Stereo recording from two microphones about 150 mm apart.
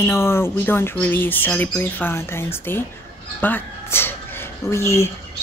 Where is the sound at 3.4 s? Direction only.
15° left (ahead or behind).